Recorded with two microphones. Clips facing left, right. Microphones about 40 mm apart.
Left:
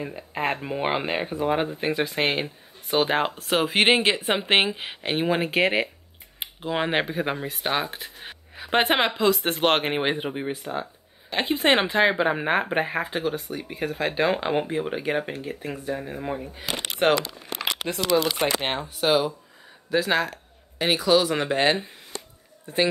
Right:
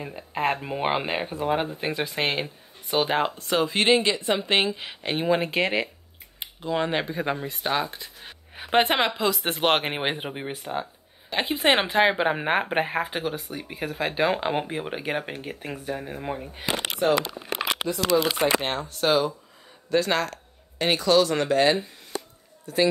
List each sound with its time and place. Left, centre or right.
0.0 s speech: centre
8.0 s a sound: left
8.6 s speech: centre
9.4 s speech: centre
16.5 s speech: right
18.1 s speech: left
18.6 s speech: left
18.9 s speech: centre; by 22.8 s left